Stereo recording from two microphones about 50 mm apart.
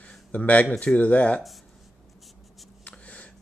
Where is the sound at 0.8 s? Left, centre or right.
Left.